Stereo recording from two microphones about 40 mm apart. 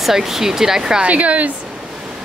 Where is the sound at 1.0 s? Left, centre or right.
Right.